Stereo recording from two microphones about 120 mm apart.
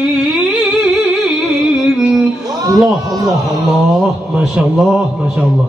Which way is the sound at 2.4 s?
30° right (ahead or behind).